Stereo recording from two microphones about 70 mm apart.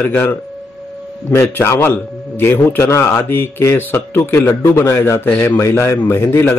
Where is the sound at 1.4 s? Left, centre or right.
Left.